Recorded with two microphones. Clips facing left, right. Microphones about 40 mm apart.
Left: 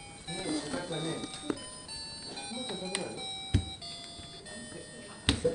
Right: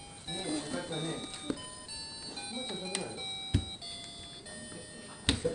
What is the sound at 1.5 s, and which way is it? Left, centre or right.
Music, left.